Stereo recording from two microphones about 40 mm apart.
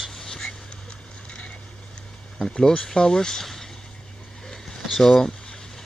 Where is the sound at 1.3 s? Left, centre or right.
Left.